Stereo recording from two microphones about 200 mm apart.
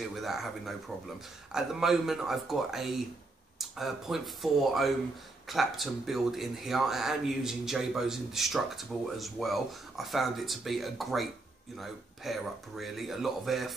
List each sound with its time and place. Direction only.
0.0 s speech: centre (ahead or behind)